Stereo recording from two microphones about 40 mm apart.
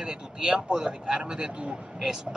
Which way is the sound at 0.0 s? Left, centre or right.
Right.